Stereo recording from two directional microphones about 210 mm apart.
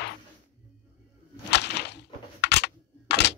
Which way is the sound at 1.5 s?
55° left (ahead or behind).